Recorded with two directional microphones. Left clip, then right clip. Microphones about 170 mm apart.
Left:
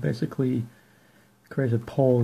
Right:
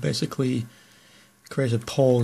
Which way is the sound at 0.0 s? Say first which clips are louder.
Right 2 dB; 15° right (ahead or behind).